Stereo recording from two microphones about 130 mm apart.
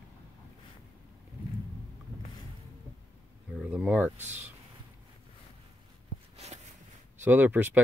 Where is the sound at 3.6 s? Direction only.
10° right (ahead or behind).